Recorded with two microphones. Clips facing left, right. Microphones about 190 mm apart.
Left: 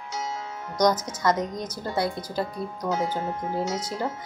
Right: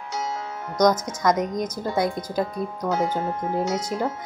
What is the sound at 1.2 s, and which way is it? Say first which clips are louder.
Speech: right 3 dB; 10° right (ahead or behind).